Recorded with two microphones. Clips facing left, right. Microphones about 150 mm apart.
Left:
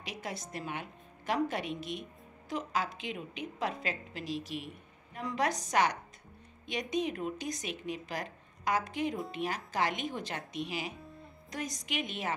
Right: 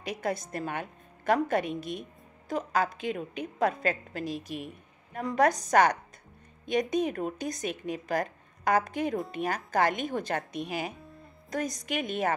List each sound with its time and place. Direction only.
0.0 s speech: 50° right (ahead or behind)